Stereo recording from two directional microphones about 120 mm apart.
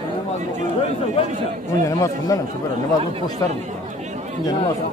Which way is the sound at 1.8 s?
25° left (ahead or behind).